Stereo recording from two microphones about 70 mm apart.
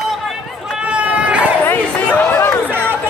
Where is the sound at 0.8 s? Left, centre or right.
Centre.